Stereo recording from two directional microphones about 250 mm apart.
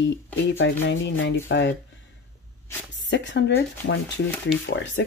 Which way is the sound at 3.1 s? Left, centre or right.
Left.